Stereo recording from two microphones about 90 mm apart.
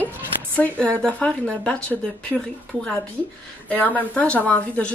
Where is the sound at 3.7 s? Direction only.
20° left (ahead or behind).